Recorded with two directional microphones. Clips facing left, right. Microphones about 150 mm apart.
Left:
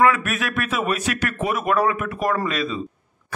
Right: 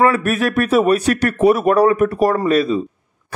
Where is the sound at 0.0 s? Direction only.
35° right (ahead or behind).